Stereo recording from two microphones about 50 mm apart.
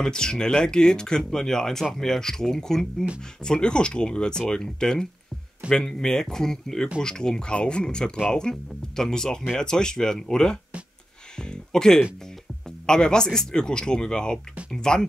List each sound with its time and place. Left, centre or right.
0.0 s speech: centre
11.7 s speech: centre